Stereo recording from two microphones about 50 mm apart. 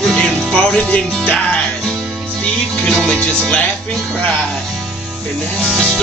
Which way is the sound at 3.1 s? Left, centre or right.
Left.